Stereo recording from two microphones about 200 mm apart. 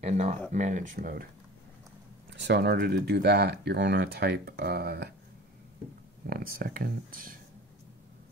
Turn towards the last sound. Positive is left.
turn(degrees=-45)  # may be behind; listen again after turning